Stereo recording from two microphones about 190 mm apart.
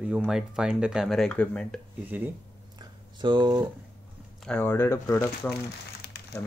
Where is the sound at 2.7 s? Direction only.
25° right (ahead or behind).